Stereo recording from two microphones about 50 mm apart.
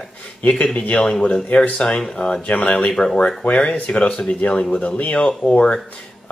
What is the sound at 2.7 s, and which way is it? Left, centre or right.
Speech, centre.